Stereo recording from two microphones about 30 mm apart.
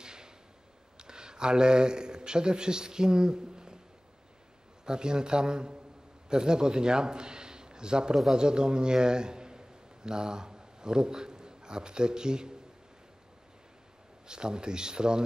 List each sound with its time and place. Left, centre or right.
0.0 s a sound: right
0.9 s a man's voice: right
4.8 s a man's voice: right
14.2 s speech: right